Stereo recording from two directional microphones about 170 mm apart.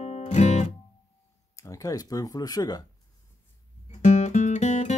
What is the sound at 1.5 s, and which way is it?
Speech, 20° left (ahead or behind).